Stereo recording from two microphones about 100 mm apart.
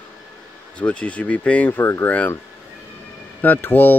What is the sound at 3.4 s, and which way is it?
Speech, 20° left (ahead or behind).